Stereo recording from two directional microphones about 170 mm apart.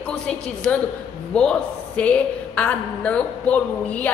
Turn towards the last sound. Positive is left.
turn(degrees=10)  # may be behind; listen again after turning